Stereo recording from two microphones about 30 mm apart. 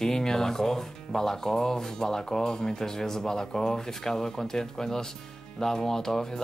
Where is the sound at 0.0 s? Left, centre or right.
Centre.